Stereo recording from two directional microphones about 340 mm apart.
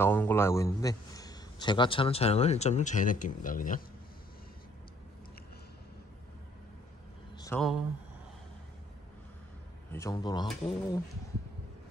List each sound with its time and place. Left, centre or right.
0.0 s a man's voice: centre; by 3.8 s left
7.3 s a sound: centre
9.9 s a man's voice: centre